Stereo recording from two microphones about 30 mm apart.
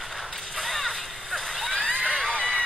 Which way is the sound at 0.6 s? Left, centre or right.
Centre.